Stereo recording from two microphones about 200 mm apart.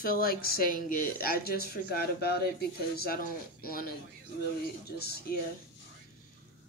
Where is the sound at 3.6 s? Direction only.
45° left (ahead or behind).